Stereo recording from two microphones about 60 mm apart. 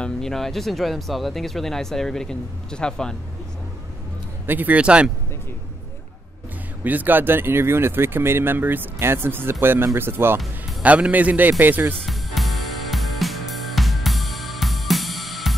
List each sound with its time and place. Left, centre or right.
0.0 s speech: centre
4.5 s a man's voice: right
6.8 s speech: right
10.8 s a man's voice: right
12.1 s music: centre